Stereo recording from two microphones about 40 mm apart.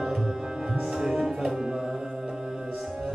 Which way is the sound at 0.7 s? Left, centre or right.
Centre.